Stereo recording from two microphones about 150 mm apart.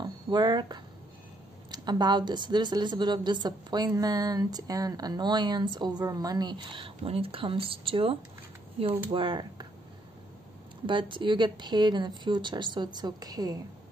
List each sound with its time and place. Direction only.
0.0 s a woman's voice: 30° right (ahead or behind)
10.9 s speech: 35° right (ahead or behind)